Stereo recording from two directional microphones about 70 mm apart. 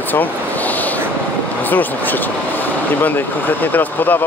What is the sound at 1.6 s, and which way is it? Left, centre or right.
Speech, left.